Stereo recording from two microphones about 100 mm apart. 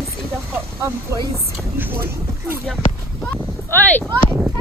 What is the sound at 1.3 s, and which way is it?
Speech, 25° right (ahead or behind).